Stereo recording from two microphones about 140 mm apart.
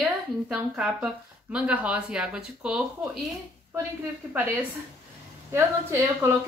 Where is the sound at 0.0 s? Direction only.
5° right (ahead or behind).